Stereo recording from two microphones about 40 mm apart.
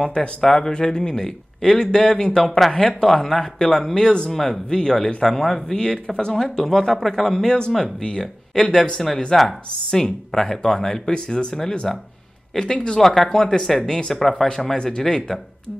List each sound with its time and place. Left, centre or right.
0.0 s speech: left
4.3 s speech: centre
13.0 s speech: centre
14.8 s speech: centre